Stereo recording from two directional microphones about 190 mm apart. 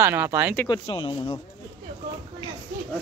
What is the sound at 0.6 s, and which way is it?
Speech, 20° left (ahead or behind).